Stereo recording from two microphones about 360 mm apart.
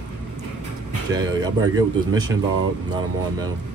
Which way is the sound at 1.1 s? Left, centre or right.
Centre.